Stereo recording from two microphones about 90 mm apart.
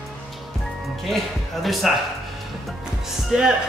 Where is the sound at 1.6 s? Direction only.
Centre (ahead or behind).